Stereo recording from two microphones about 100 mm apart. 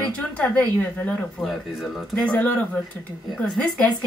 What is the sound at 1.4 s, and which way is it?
A woman's voice, 5° left (ahead or behind).